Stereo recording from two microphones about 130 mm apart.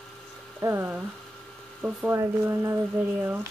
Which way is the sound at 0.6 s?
20° right (ahead or behind).